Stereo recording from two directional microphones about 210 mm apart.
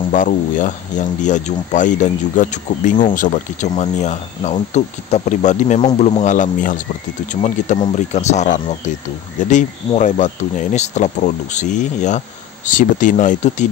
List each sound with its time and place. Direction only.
0.1 s speech: 40° left (ahead or behind)